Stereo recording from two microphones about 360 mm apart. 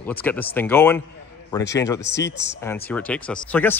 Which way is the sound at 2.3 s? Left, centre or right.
Left.